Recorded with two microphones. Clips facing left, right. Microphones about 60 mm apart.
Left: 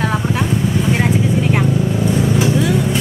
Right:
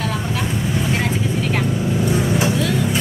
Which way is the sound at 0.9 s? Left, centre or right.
Centre.